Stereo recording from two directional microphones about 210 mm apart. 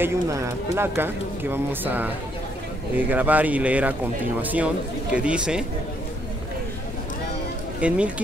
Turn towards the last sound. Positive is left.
turn(degrees=-5)  # may be behind; listen again after turning